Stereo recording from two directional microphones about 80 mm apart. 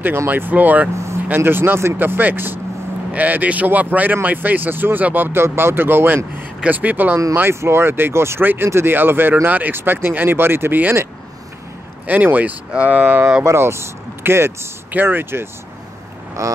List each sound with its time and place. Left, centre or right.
0.0 s speech: right
12.1 s speech: right
13.4 s speech: right
16.4 s a sound: right